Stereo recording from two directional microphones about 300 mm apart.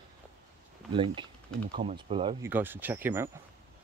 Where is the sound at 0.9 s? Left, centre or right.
Centre.